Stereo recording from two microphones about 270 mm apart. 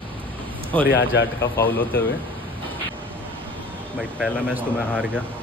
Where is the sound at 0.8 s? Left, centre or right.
Left.